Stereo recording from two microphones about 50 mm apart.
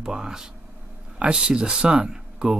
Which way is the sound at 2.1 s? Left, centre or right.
Centre.